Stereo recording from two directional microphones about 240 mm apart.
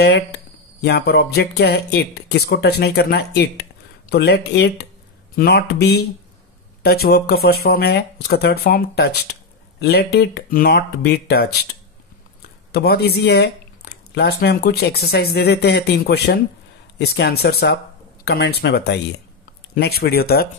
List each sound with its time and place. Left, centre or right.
0.0 s speech: left
12.7 s speech: left